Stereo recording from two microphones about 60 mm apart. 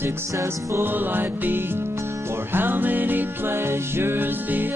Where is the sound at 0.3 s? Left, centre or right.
Right.